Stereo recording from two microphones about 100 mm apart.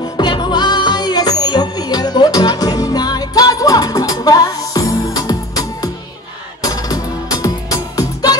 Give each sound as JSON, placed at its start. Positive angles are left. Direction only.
{"t": 0.2, "sound": "music", "side_deg": 45}